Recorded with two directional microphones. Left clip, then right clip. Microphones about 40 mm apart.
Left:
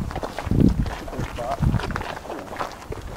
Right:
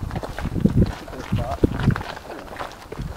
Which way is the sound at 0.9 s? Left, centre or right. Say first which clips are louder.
Even; right.